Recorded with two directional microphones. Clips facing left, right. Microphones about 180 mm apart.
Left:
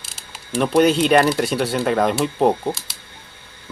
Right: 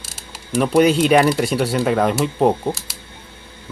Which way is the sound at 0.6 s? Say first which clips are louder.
Right 1 dB; 5° right (ahead or behind).